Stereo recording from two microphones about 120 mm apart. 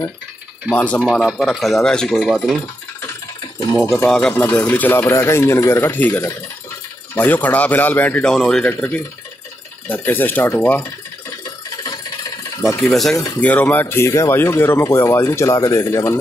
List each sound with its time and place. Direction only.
0.7 s speech: 10° left (ahead or behind)
3.9 s speech: 5° left (ahead or behind)
12.5 s cutlery: 25° left (ahead or behind)
12.8 s speech: centre (ahead or behind)
13.4 s speech: 15° left (ahead or behind)